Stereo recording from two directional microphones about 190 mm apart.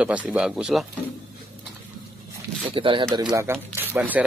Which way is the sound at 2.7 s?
25° right (ahead or behind).